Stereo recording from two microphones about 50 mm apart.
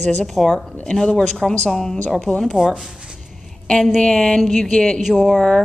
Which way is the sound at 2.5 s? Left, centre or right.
Centre.